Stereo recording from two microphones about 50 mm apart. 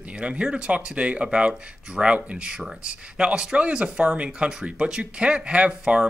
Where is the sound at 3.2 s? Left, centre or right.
Right.